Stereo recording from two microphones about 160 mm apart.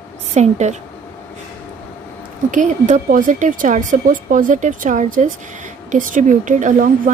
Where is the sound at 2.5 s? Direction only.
50° right (ahead or behind).